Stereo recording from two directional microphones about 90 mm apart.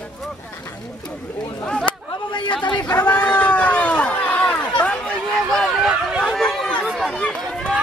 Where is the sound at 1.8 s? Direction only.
60° left (ahead or behind).